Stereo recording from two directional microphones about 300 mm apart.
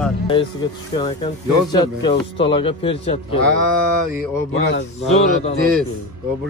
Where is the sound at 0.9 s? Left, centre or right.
Centre.